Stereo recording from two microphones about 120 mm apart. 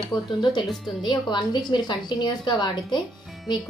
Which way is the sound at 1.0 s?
40° left (ahead or behind).